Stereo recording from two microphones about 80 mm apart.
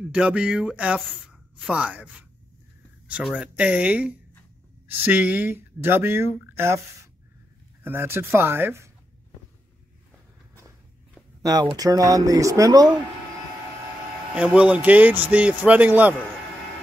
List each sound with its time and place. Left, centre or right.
0.1 s speech: centre
3.3 s speech: centre; by 6.8 s right
7.8 s speech: right
11.7 s speech: right
14.3 s speech: centre